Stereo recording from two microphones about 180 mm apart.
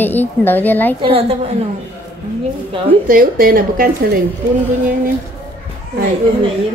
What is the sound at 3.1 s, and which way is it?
A woman's voice, 55° right (ahead or behind).